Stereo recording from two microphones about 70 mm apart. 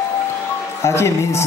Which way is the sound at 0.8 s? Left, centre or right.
Left.